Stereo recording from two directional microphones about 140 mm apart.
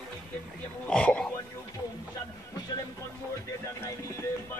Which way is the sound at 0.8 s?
5° left (ahead or behind).